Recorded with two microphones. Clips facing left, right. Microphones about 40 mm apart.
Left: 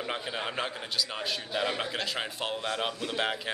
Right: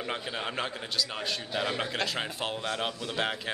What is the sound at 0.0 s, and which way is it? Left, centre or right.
Speech, centre.